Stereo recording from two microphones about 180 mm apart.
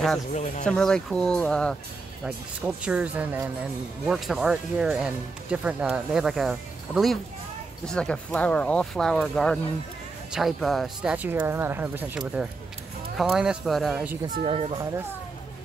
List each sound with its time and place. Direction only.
0.3 s speech: 40° left (ahead or behind)
0.7 s speech: 5° left (ahead or behind)
2.2 s speech: 10° right (ahead or behind)
14.4 s speech: 30° right (ahead or behind)